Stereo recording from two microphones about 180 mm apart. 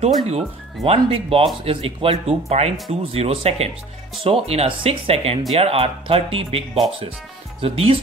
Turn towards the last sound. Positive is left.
turn(degrees=-30)  # may be behind; listen again after turning